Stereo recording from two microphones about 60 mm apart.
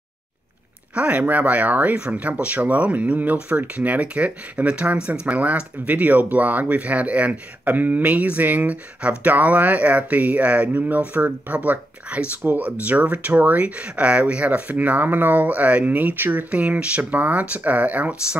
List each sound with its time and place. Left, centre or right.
0.9 s speech: right